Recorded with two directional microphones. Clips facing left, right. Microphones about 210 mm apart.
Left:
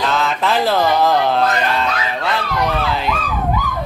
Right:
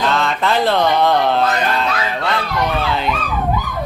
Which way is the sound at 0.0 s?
Centre (ahead or behind).